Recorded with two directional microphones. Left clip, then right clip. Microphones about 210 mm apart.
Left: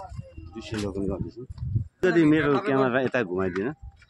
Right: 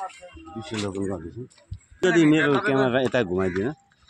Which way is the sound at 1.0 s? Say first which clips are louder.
Right 1 dB; 30° right (ahead or behind).